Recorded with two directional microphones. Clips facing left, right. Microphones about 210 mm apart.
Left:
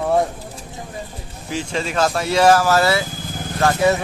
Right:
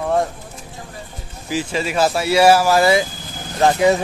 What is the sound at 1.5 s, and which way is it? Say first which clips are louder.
Speech: right 2 dB; 5° right (ahead or behind).